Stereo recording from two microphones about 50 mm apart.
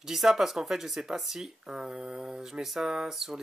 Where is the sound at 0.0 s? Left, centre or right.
Centre.